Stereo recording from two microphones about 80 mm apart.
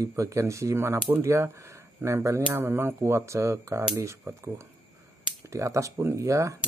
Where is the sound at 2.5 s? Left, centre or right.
Right.